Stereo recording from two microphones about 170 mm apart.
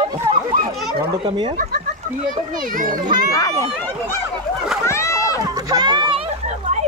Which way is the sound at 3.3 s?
20° left (ahead or behind).